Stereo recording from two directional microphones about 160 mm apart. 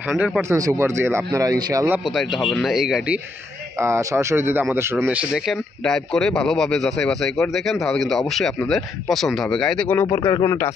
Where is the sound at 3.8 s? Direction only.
20° right (ahead or behind); by 10.0 s 10° left (ahead or behind).